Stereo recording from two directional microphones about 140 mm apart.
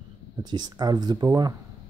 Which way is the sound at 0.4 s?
30° right (ahead or behind).